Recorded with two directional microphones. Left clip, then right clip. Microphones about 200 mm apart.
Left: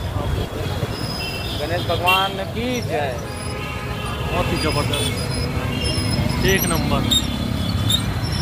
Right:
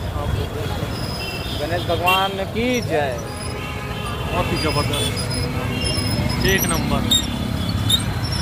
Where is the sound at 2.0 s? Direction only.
50° right (ahead or behind).